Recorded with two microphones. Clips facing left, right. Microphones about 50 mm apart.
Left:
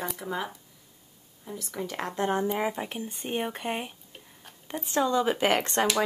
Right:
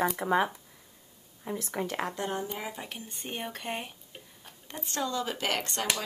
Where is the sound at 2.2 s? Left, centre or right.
Left.